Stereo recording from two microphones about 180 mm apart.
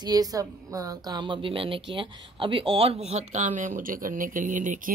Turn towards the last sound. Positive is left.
turn(degrees=-45)  # may be behind; listen again after turning